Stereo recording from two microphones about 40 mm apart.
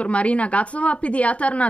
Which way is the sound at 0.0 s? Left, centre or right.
Left.